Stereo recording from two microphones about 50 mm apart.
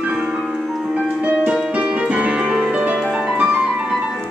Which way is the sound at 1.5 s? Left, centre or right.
Centre.